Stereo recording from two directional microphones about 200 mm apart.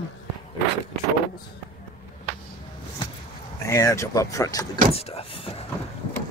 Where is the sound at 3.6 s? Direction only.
15° left (ahead or behind).